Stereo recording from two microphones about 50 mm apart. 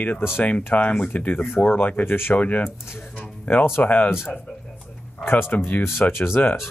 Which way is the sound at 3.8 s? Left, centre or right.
Left.